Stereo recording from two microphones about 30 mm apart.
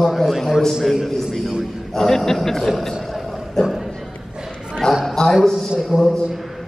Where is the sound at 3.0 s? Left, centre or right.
Centre.